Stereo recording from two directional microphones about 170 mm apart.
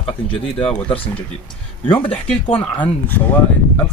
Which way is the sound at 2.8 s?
10° left (ahead or behind).